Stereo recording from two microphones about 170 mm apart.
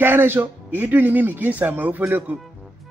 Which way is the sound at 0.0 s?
10° right (ahead or behind).